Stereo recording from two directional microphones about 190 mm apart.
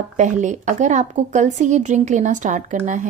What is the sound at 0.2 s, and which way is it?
A woman's voice, 40° right (ahead or behind).